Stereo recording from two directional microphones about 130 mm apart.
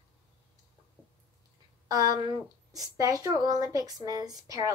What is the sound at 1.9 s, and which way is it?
Speech, 30° right (ahead or behind).